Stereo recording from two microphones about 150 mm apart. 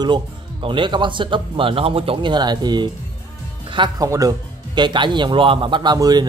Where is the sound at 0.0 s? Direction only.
30° right (ahead or behind).